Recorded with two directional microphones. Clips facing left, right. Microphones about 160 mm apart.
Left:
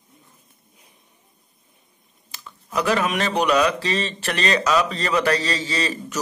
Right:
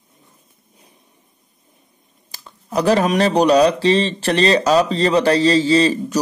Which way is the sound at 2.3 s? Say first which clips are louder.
Right 5 dB; 35° right (ahead or behind).